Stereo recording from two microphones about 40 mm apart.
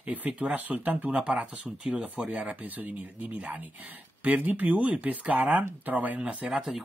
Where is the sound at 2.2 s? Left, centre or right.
Right.